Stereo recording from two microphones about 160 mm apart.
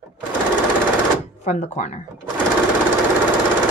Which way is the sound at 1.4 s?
45° left (ahead or behind).